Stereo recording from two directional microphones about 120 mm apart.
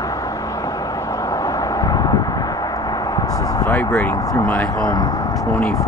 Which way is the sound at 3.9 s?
25° left (ahead or behind).